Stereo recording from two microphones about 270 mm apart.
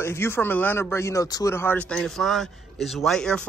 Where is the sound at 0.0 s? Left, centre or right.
Centre.